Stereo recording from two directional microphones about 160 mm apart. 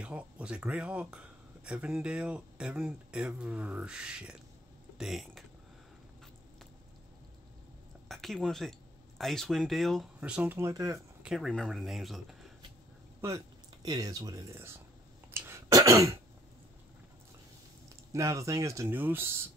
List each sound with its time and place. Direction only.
0.0 s speech: 10° right (ahead or behind)
8.1 s speech: centre (ahead or behind); by 11.0 s 20° right (ahead or behind)
11.2 s speech: centre (ahead or behind)
13.8 s speech: 25° right (ahead or behind)
15.3 s throat clearing: 15° right (ahead or behind)
18.1 s speech: 20° right (ahead or behind)